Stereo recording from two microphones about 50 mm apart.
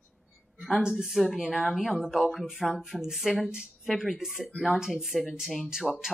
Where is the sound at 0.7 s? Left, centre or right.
Centre.